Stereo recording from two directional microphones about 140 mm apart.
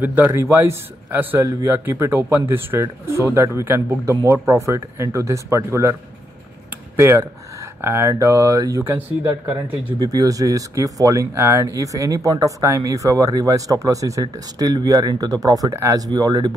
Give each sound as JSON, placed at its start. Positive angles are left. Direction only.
{"t": 0.0, "sound": "speech", "side_deg": -15}
{"t": 7.0, "sound": "speech", "side_deg": -20}
{"t": 9.9, "sound": "speech", "side_deg": -25}